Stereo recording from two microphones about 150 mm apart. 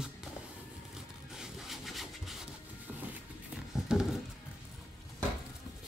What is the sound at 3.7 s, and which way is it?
Dog, 5° right (ahead or behind).